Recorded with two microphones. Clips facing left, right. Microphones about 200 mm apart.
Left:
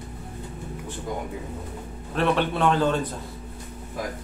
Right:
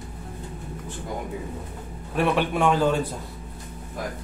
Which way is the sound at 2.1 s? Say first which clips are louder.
Even; 10° right (ahead or behind).